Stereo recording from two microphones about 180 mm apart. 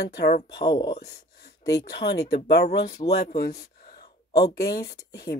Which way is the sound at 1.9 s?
65° left (ahead or behind).